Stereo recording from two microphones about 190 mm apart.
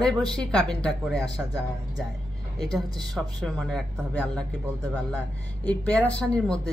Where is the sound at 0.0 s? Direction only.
5° left (ahead or behind).